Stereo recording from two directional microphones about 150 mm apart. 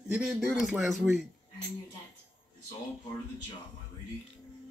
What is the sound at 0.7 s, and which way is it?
Speech, centre (ahead or behind).